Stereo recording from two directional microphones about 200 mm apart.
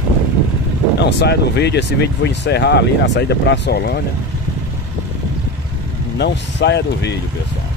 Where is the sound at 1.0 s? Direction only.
55° left (ahead or behind).